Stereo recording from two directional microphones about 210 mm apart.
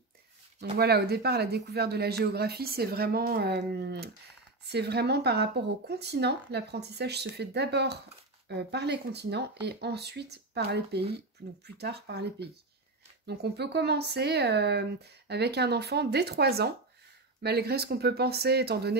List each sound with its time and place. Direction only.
0.7 s speech: 50° right (ahead or behind)